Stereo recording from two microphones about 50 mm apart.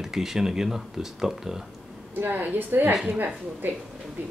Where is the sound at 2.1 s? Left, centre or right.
Right.